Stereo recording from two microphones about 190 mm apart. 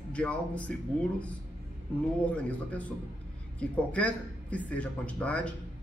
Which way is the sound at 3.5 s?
5° left (ahead or behind).